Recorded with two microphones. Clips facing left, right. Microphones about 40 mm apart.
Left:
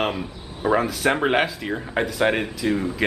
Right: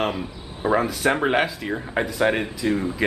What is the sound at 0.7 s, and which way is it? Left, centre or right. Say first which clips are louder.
A man's voice: even; centre.